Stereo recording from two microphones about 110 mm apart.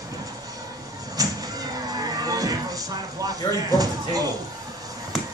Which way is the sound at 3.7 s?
35° right (ahead or behind).